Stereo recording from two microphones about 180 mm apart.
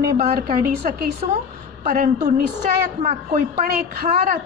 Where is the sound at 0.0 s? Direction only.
60° right (ahead or behind).